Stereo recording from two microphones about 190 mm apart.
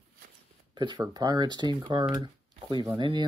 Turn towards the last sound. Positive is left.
turn(degrees=-25)  # may be behind; listen again after turning